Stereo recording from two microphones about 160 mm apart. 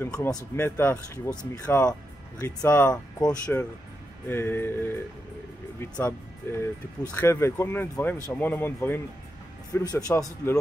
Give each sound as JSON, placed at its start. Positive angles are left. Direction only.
{"t": 0.0, "sound": "a man's voice", "side_deg": 15}